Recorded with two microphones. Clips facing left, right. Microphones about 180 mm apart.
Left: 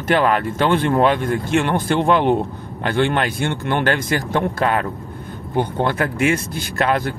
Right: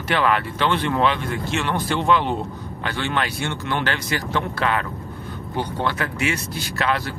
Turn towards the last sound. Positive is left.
turn(degrees=50)  # may be behind; listen again after turning